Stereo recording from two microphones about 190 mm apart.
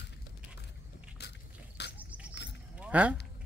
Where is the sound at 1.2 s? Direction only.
60° left (ahead or behind).